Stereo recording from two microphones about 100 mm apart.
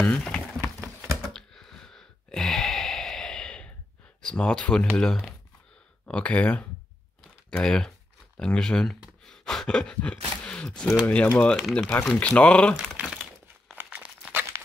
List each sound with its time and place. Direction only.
0.0 s a sound: 10° left (ahead or behind)
4.2 s speech: 10° left (ahead or behind)
11.5 s speech: centre (ahead or behind)
11.9 s speech: 20° left (ahead or behind)
12.3 s speech: 10° left (ahead or behind)
13.0 s crack: 5° right (ahead or behind)
13.7 s crumpling: 15° right (ahead or behind)